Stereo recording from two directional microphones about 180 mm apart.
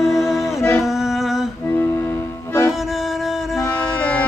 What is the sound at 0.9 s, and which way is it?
Music, centre (ahead or behind).